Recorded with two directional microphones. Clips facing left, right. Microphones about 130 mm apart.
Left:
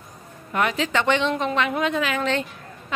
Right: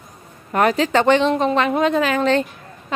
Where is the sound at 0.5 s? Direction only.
40° right (ahead or behind).